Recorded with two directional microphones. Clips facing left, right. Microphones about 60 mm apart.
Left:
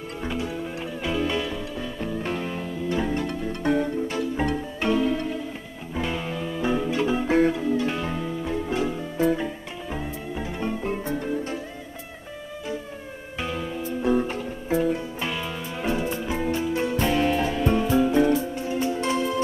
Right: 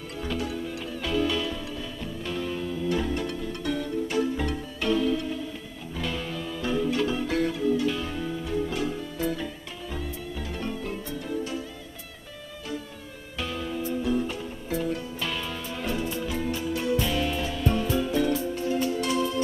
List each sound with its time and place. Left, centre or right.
0.2 s music: left
13.4 s music: left
14.7 s music: left